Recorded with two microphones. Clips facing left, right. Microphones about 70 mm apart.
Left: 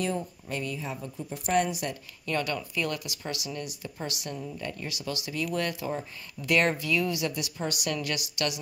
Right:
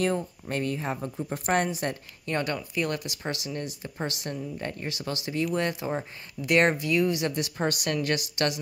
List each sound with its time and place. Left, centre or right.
0.0 s speech: right